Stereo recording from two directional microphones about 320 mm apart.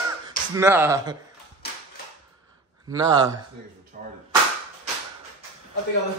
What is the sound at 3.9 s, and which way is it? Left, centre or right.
Speech, right.